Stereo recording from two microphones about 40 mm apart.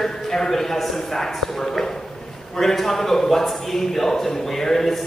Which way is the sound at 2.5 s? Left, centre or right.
Centre.